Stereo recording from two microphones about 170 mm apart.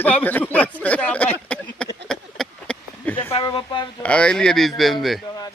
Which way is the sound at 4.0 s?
5° left (ahead or behind).